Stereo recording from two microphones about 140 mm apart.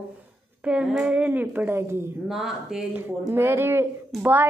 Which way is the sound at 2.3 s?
5° right (ahead or behind).